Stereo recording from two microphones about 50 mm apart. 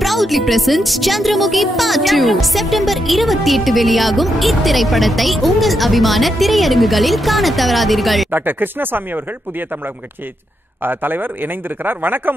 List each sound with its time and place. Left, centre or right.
0.0 s speech: centre
8.3 s speech: right
10.8 s speech: right